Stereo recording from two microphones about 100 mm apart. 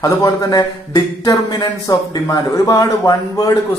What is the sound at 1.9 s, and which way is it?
A man's voice, 35° left (ahead or behind).